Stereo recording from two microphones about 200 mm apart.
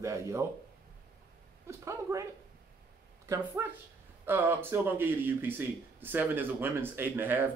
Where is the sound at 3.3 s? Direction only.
10° right (ahead or behind).